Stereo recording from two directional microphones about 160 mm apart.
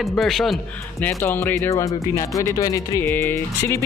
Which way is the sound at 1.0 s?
10° left (ahead or behind).